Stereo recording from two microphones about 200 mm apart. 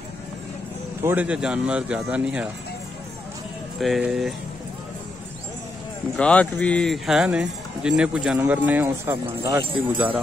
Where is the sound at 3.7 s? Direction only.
Centre (ahead or behind).